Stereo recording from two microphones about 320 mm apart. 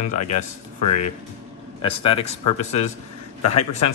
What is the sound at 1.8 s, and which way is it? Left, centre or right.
Speech, centre.